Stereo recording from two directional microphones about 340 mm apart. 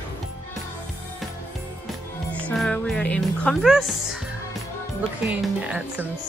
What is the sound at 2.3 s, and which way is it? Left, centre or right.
Music, centre.